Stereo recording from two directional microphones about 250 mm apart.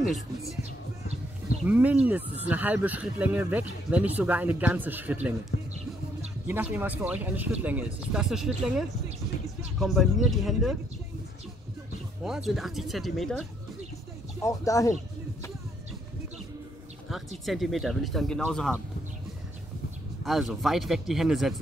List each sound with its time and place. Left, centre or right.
1.7 s speech: centre
5.5 s music: left
6.4 s speech: centre
12.2 s speech: centre
14.4 s speech: centre
17.1 s speech: centre
20.2 s speech: centre